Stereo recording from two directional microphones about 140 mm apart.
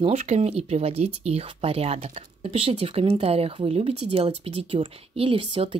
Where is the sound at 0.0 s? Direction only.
50° right (ahead or behind).